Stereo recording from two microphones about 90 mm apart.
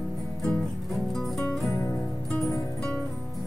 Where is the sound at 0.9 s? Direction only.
Centre (ahead or behind).